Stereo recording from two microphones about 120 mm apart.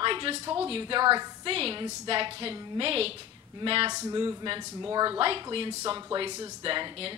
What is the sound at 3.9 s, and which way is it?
Speech, 30° right (ahead or behind).